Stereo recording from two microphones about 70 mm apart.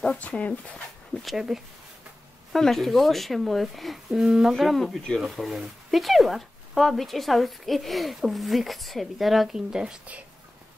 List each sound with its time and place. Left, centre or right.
0.2 s speech: left
1.2 s speech: centre